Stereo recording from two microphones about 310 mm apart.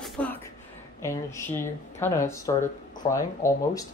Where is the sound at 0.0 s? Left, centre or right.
Centre.